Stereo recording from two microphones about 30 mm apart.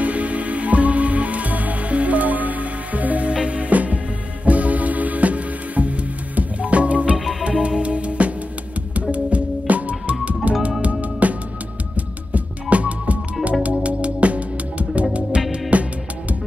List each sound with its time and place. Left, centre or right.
0.0 s music: right
7.2 s music: centre
7.8 s music: right
9.1 s music: right